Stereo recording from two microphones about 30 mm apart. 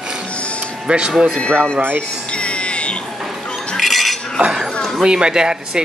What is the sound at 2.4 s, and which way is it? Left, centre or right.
Music, left.